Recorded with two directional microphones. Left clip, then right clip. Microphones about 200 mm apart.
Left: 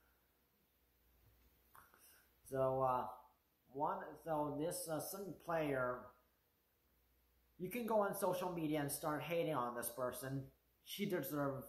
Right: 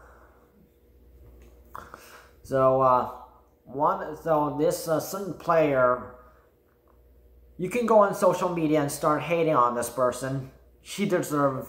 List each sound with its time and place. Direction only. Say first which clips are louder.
2.4 s speech: right 17 dB; 5° left (ahead or behind)
7.9 s speech: right 18 dB; centre (ahead or behind)